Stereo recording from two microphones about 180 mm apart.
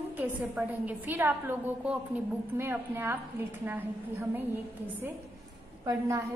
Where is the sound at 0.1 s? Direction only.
10° right (ahead or behind).